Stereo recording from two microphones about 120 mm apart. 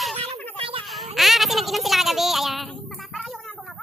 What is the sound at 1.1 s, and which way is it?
Child singing, centre (ahead or behind).